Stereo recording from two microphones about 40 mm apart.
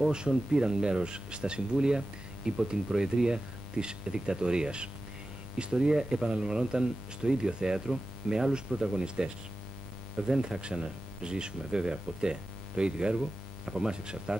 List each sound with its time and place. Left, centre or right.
0.1 s speech: centre